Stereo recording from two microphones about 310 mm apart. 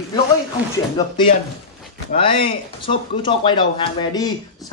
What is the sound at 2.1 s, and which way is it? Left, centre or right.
Speech, centre.